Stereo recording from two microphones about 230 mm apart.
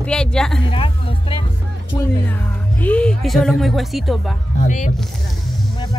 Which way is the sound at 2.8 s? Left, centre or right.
Centre.